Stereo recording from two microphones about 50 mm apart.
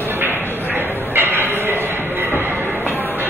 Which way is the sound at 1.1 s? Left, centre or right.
Right.